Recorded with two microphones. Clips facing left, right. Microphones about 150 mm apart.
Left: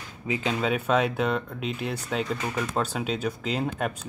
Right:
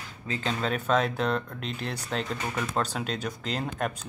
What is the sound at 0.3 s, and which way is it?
Speech, 5° left (ahead or behind).